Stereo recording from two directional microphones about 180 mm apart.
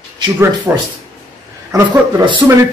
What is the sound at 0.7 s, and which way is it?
Speech, 10° right (ahead or behind).